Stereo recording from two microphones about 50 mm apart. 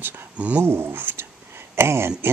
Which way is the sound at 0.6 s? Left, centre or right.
Right.